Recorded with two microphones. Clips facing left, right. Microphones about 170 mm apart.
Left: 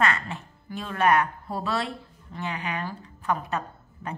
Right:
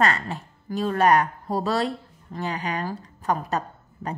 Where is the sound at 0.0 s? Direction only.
40° right (ahead or behind).